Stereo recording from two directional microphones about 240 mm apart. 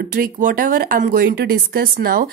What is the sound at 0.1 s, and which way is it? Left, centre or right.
A woman's voice, right.